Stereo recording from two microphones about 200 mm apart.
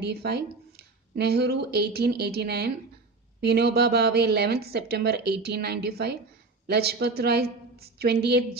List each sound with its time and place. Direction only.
0.0 s a woman's voice: 55° right (ahead or behind)